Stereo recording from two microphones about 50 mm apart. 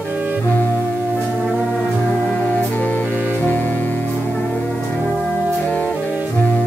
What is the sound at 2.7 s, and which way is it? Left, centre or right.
Music, left.